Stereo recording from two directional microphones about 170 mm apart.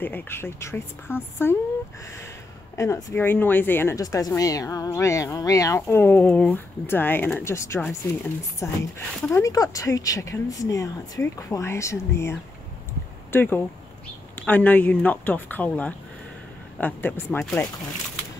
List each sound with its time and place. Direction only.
0.0 s speech: 10° left (ahead or behind)
2.7 s speech: 15° left (ahead or behind)